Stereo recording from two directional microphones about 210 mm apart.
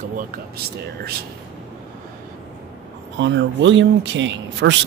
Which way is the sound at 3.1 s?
60° right (ahead or behind).